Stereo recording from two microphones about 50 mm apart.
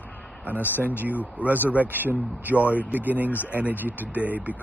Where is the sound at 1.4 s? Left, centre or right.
Right.